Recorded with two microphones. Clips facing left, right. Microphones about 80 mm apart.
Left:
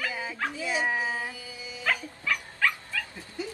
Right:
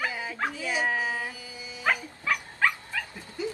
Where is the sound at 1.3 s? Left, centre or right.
Right.